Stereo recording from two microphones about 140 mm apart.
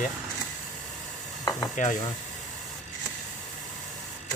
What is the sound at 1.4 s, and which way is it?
Stir, 25° left (ahead or behind).